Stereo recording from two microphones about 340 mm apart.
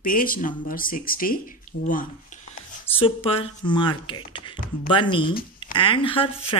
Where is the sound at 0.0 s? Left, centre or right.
Left.